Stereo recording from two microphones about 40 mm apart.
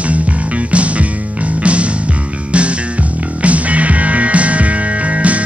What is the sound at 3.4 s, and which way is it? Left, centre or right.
Music, right.